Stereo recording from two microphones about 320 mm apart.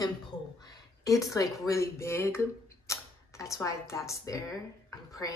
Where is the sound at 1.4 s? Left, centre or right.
Centre.